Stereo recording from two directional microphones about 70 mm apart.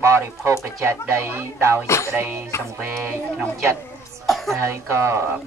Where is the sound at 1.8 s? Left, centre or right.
Left.